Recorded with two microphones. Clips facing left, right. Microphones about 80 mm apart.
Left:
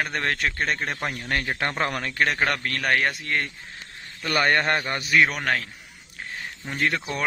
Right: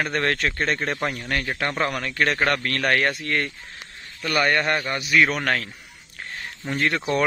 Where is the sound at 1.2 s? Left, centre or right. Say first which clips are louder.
Even; left.